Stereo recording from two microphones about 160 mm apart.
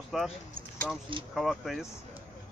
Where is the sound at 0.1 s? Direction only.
5° right (ahead or behind).